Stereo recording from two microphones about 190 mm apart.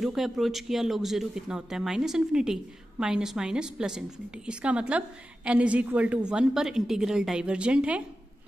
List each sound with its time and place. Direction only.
0.0 s speech: centre (ahead or behind)